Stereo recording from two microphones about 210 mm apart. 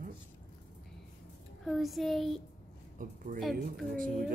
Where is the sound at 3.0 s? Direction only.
40° right (ahead or behind).